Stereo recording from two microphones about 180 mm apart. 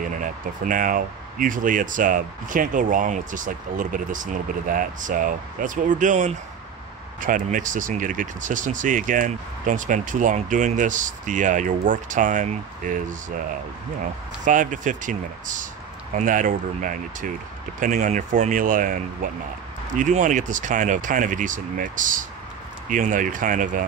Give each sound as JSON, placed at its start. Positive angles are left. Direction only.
{"t": 0.2, "sound": "speech", "side_deg": -50}
{"t": 14.4, "sound": "speech", "side_deg": -45}